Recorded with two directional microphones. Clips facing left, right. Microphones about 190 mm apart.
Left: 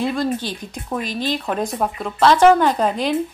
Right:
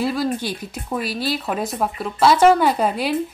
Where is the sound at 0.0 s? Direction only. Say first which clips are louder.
Even; 5° right (ahead or behind).